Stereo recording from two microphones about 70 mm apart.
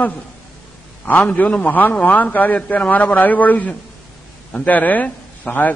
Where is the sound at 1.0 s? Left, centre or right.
Left.